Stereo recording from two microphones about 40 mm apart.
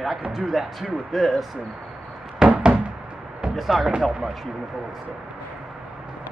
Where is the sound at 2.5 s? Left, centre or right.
Right.